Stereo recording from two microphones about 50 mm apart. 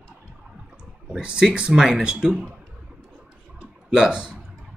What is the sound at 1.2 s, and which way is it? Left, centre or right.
Speech, centre.